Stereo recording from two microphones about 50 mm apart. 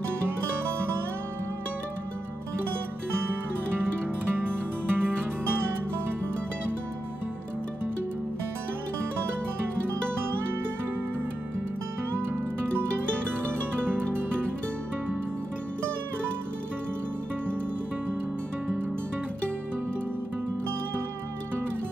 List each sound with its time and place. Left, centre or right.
4.4 s music: right